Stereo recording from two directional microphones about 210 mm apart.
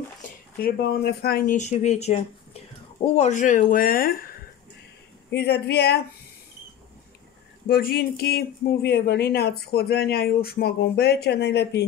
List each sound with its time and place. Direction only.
0.6 s speech: 45° left (ahead or behind)
7.6 s speech: 45° left (ahead or behind)